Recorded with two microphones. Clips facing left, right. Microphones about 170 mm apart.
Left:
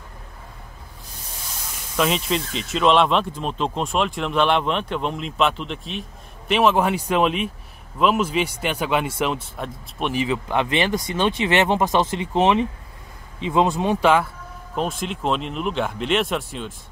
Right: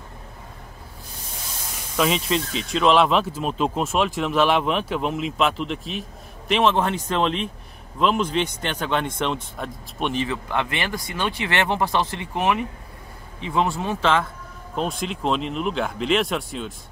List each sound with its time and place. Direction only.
2.0 s speech: centre (ahead or behind)
10.2 s speech: 15° left (ahead or behind)
14.8 s speech: centre (ahead or behind)